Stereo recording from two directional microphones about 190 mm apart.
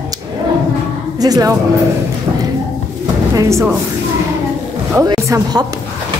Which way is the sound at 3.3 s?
15° right (ahead or behind).